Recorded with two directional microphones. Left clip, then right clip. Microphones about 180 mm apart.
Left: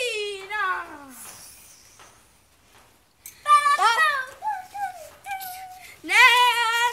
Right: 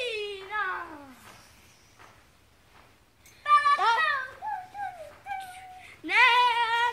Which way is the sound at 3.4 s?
20° left (ahead or behind).